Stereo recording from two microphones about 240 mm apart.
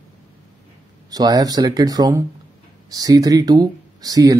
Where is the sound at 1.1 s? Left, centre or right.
Centre.